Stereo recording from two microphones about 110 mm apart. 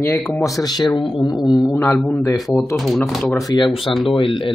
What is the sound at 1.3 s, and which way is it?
Speech, centre (ahead or behind).